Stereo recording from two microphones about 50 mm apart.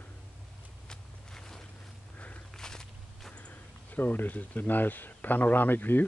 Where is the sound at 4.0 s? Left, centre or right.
Left.